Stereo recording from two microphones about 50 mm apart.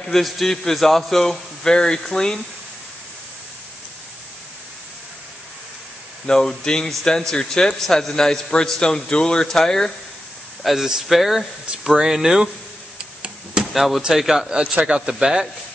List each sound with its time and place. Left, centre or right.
0.0 s a man's voice: centre
6.2 s a man's voice: centre
10.6 s speech: centre
13.7 s speech: centre
14.5 s speech: right